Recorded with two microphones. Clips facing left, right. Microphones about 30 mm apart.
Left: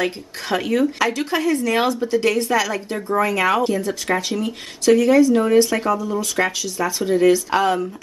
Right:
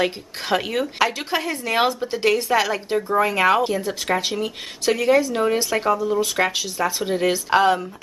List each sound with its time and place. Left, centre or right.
0.0 s speech: centre
3.0 s speech: centre
3.3 s speech: centre
6.5 s speech: right